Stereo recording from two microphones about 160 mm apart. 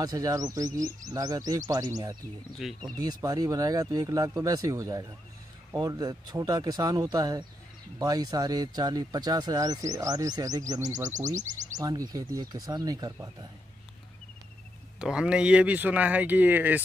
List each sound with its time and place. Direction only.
0.0 s speech: 25° right (ahead or behind)
2.6 s speech: centre (ahead or behind)
3.0 s speech: 25° right (ahead or behind)
11.1 s speech: 50° right (ahead or behind)
11.8 s speech: 25° right (ahead or behind)
15.0 s speech: 5° right (ahead or behind)